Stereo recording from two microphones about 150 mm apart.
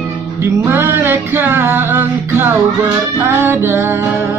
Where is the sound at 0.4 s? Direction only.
15° right (ahead or behind).